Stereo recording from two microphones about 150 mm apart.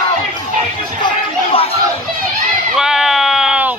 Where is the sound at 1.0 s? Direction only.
40° left (ahead or behind).